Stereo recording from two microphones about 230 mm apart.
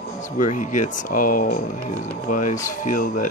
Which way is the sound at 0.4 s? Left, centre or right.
Left.